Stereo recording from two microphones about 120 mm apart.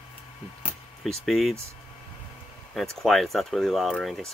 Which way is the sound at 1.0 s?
Centre (ahead or behind).